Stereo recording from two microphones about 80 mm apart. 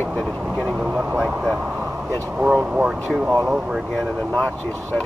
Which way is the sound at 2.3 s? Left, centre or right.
Right.